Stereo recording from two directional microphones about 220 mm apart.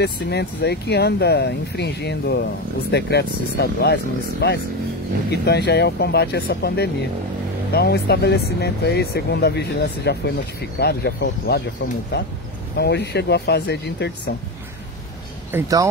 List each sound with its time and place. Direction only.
0.0 s speech: 50° left (ahead or behind)
12.7 s speech: 50° left (ahead or behind)
15.5 s speech: 15° right (ahead or behind)